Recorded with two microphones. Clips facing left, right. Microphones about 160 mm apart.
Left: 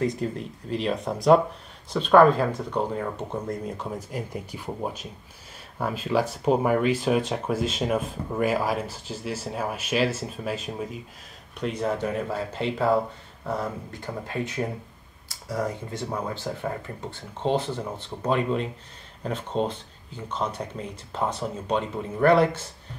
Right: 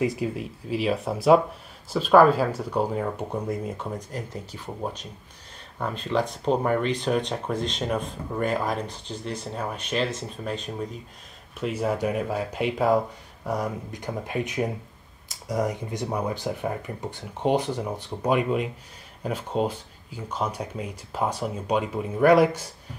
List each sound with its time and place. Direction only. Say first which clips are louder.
0.0 s speech: right 1 dB; 10° right (ahead or behind)
4.3 s speech: left 2 dB; 10° left (ahead or behind)
11.6 s speech: right 1 dB; 10° right (ahead or behind)